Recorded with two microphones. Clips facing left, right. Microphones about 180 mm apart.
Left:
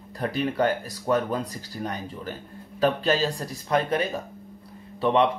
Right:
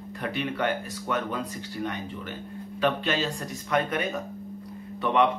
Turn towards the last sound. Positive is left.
turn(degrees=30)  # may be behind; listen again after turning